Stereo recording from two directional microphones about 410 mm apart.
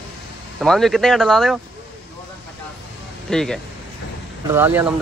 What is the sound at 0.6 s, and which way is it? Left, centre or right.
Speech, centre.